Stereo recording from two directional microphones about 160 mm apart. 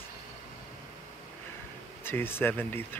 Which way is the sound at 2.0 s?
15° left (ahead or behind).